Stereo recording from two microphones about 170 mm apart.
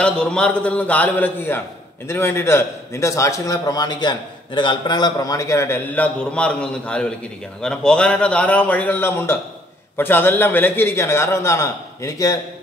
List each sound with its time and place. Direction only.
0.0 s a man's voice: 5° left (ahead or behind)